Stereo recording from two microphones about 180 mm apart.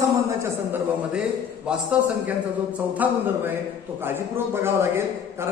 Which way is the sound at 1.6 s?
10° right (ahead or behind).